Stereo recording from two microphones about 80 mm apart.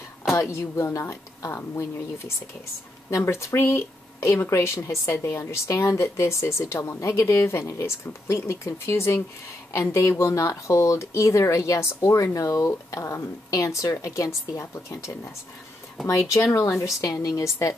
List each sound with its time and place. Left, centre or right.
0.3 s speech: left